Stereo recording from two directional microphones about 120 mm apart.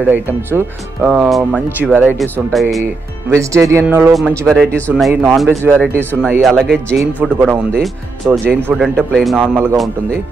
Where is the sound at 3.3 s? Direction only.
25° right (ahead or behind).